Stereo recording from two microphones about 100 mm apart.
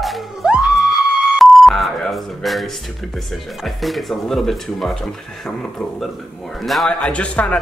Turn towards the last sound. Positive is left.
turn(degrees=10)  # may be behind; listen again after turning